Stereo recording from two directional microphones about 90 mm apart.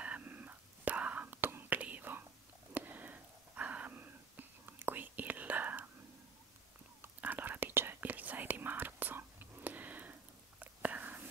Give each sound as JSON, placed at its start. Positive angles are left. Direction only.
{"t": 0.0, "sound": "whispering", "side_deg": -15}
{"t": 7.0, "sound": "whispering", "side_deg": -20}